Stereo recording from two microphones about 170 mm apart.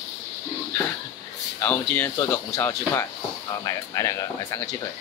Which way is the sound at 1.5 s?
10° left (ahead or behind).